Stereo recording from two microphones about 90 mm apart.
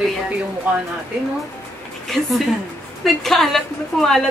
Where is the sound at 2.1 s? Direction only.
Centre (ahead or behind).